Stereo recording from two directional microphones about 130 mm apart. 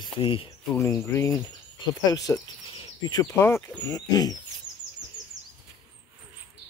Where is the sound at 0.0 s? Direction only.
45° left (ahead or behind).